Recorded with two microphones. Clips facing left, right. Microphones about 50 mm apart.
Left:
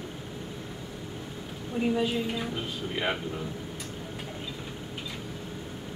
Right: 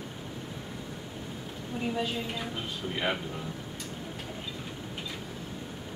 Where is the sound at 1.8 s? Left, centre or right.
Centre.